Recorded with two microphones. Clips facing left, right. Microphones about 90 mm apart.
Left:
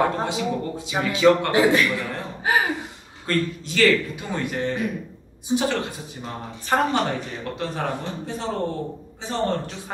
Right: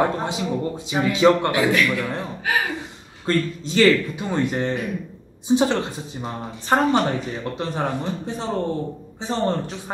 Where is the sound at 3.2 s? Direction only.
25° right (ahead or behind).